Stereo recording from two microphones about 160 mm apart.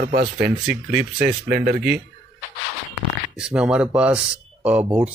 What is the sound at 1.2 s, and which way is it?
Speech, 90° right.